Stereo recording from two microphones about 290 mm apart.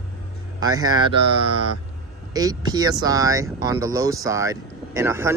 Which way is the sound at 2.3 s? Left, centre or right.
Centre.